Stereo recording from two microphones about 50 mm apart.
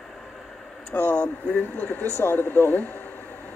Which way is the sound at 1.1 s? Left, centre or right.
Left.